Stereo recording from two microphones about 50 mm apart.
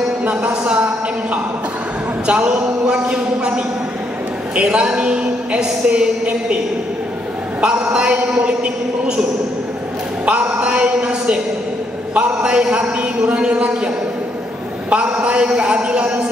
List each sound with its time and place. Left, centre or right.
0.3 s a man's voice: right
7.6 s a man's voice: right
10.2 s a man's voice: right
14.9 s a man's voice: right